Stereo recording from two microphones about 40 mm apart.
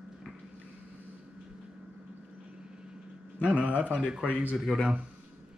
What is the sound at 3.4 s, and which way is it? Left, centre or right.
A man's voice, right.